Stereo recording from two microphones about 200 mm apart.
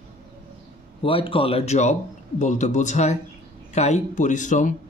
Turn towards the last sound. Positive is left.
turn(degrees=40)  # may be behind; listen again after turning